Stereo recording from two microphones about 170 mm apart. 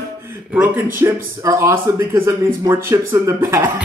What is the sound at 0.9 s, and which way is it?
Speech, 15° right (ahead or behind).